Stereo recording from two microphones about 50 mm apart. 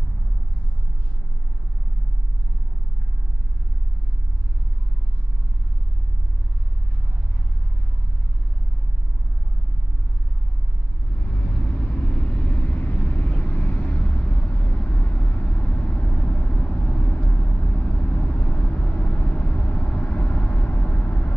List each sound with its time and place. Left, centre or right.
11.4 s vehicle: left